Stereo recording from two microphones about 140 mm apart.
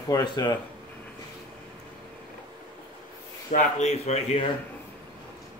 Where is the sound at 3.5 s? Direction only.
60° left (ahead or behind).